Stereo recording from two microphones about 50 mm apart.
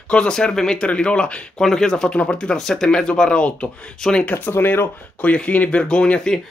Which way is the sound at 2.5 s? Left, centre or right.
Centre.